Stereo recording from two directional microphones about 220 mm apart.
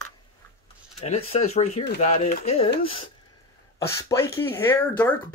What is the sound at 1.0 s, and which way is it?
Speech, 30° left (ahead or behind).